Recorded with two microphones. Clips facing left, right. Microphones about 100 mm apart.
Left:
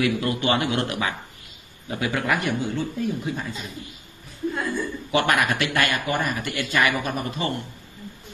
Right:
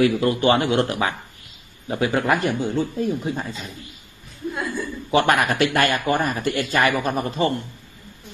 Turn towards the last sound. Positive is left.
turn(degrees=-35)  # may be behind; listen again after turning